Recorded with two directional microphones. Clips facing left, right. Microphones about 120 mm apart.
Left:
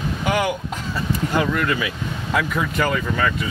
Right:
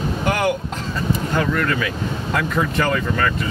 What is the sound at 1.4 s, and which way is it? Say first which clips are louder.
Speech: even; 10° left (ahead or behind).